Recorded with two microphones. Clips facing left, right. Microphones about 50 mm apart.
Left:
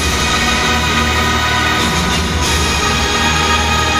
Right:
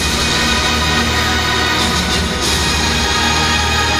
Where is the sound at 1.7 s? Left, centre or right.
Left.